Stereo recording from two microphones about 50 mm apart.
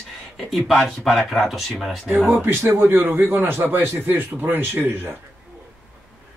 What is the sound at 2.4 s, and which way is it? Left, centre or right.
A man's voice, right.